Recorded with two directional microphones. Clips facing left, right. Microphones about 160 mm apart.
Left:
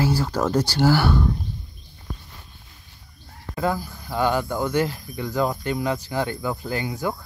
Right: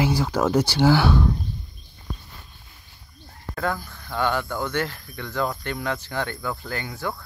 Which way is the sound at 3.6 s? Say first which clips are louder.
Left 3 dB; 10° left (ahead or behind).